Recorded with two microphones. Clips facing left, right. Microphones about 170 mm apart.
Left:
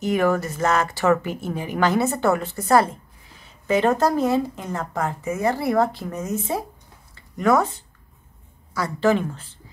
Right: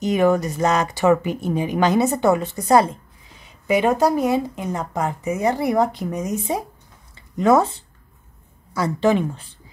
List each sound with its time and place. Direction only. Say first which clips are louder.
0.0 s speech: right 3 dB; 20° right (ahead or behind)